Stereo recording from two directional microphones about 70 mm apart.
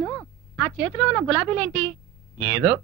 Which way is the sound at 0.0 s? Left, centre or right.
Left.